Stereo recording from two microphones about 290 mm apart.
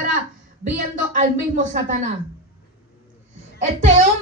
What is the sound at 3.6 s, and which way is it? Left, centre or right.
Speech, right.